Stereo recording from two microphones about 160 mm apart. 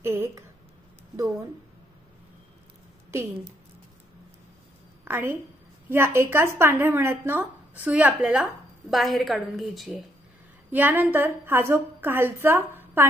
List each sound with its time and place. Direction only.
0.0 s a sound: 15° right (ahead or behind)
3.1 s speech: 20° right (ahead or behind)
5.0 s a woman's voice: 15° right (ahead or behind)
10.7 s speech: 10° right (ahead or behind)